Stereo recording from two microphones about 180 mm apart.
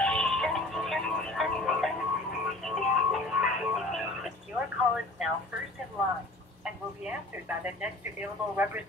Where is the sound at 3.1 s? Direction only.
Centre (ahead or behind).